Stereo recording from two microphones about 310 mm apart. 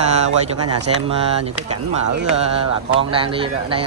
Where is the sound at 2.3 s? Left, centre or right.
Centre.